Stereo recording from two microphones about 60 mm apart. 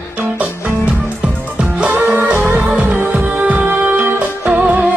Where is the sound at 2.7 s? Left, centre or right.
Right.